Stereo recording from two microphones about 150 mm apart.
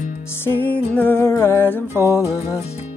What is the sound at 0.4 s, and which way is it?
Music, 15° left (ahead or behind).